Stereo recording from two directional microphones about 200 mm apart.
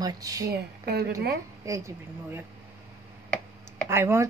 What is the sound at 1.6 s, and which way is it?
Speech, 15° right (ahead or behind).